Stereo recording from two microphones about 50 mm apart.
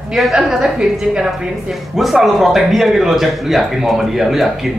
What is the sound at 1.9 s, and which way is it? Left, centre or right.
Speech, centre.